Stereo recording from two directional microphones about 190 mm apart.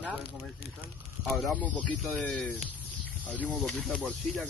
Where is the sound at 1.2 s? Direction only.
Centre (ahead or behind).